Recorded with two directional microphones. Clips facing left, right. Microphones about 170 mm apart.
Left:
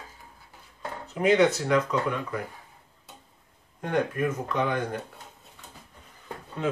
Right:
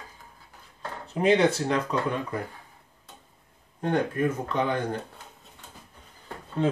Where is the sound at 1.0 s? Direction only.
30° right (ahead or behind).